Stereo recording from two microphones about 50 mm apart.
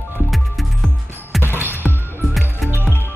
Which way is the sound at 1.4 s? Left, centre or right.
Right.